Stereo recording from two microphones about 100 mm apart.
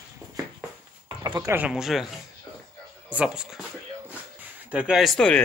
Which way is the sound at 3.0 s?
10° right (ahead or behind).